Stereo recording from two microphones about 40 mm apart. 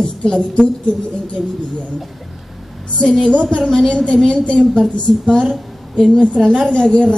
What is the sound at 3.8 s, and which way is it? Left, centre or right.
A woman's voice, left.